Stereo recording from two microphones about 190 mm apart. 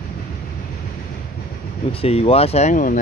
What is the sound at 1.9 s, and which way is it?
Speech, 30° left (ahead or behind).